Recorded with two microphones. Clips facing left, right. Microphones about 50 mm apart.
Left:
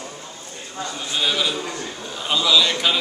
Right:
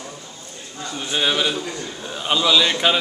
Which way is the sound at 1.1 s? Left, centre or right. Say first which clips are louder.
Right 2 dB; right.